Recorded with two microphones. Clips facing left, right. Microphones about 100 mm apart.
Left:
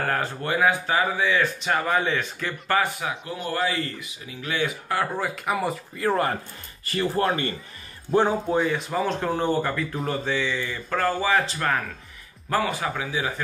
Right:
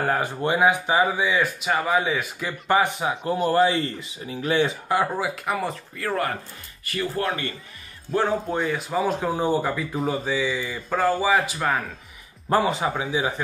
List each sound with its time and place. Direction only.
0.0 s speech: 15° right (ahead or behind)
3.3 s speech: 40° right (ahead or behind)
5.1 s speech: 5° right (ahead or behind)
5.9 s speech: 25° left (ahead or behind)
8.3 s speech: centre (ahead or behind)
12.4 s speech: 25° right (ahead or behind)